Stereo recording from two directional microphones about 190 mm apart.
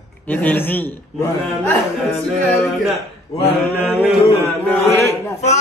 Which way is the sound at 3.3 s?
15° left (ahead or behind).